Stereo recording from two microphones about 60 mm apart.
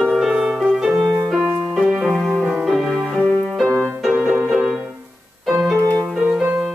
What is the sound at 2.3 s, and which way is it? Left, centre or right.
Music, right.